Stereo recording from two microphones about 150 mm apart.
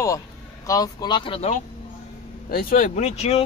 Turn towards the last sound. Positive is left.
turn(degrees=45)  # may be behind; listen again after turning